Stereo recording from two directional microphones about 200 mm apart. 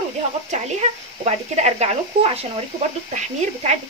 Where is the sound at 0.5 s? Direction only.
35° right (ahead or behind).